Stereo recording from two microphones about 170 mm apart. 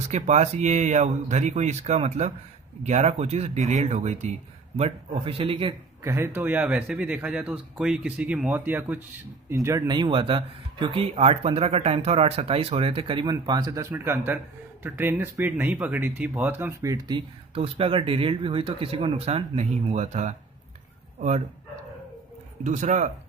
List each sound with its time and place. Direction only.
0.1 s speech: 40° right (ahead or behind)
6.0 s speech: 15° right (ahead or behind)
17.6 s speech: 35° right (ahead or behind)
22.6 s speech: 45° right (ahead or behind)